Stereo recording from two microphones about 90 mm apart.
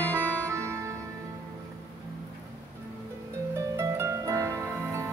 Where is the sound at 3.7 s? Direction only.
30° right (ahead or behind).